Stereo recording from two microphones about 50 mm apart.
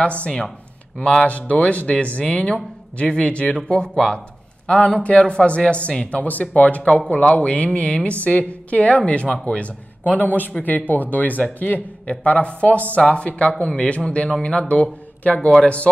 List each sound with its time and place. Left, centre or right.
0.0 s a man's voice: left
4.6 s a man's voice: left